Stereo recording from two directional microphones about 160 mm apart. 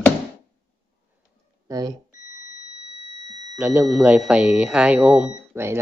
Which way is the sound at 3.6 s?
10° right (ahead or behind).